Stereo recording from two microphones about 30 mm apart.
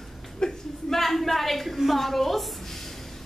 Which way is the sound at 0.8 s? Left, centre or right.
Centre.